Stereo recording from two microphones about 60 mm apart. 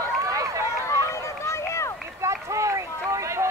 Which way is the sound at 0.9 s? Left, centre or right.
Left.